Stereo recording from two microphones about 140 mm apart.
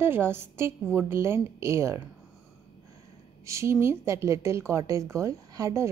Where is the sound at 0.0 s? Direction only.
15° right (ahead or behind).